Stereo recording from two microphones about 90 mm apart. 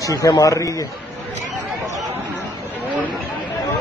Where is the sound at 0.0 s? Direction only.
35° left (ahead or behind).